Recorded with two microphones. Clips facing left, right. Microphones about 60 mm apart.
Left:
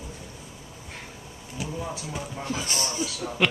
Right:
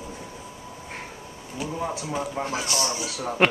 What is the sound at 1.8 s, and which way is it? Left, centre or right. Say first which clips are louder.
Speech: right 5 dB; right.